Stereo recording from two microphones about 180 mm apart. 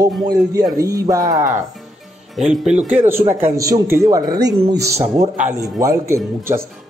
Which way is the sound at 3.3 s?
15° right (ahead or behind).